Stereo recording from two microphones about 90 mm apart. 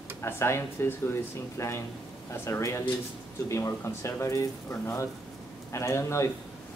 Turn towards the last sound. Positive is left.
turn(degrees=30)  # may be behind; listen again after turning